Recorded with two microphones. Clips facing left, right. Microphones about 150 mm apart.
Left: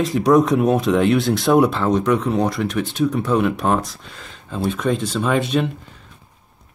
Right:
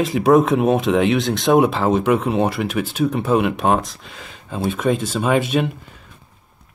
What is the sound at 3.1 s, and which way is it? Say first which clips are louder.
Speech: right 1 dB; 30° right (ahead or behind).